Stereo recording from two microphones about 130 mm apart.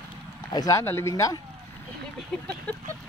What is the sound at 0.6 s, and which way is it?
Speech, 25° left (ahead or behind).